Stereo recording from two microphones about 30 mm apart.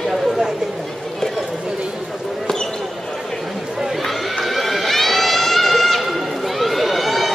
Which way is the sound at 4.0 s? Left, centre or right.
Centre.